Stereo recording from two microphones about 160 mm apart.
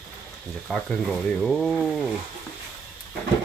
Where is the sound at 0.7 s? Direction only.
Centre (ahead or behind).